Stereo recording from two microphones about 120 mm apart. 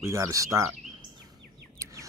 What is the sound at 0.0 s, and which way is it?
Speech, 25° right (ahead or behind).